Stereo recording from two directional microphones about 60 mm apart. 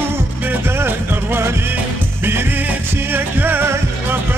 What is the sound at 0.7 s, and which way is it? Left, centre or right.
Music, right.